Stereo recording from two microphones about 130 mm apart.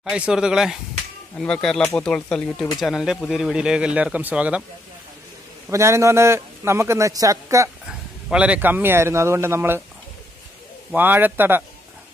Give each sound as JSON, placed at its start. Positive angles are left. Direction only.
{"t": 0.1, "sound": "speech", "side_deg": -5}
{"t": 1.3, "sound": "speech", "side_deg": 5}
{"t": 5.7, "sound": "a man's voice", "side_deg": -20}
{"t": 7.8, "sound": "a man's voice", "side_deg": -10}
{"t": 10.9, "sound": "a man's voice", "side_deg": -15}